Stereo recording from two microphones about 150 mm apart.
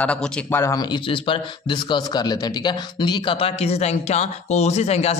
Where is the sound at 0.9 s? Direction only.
35° left (ahead or behind).